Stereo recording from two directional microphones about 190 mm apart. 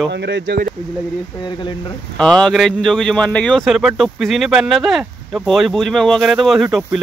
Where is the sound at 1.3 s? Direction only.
25° left (ahead or behind).